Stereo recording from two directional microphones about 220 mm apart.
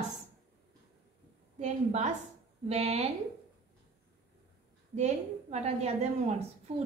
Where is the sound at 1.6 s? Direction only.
30° right (ahead or behind).